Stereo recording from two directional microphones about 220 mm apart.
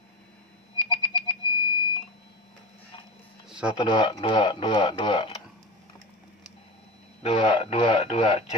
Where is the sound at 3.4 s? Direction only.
5° right (ahead or behind).